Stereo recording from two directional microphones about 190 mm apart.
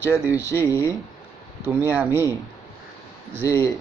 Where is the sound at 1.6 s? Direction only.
10° right (ahead or behind).